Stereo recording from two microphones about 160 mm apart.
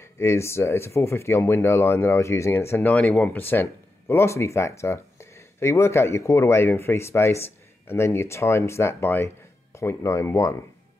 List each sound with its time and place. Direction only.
0.2 s speech: 15° left (ahead or behind)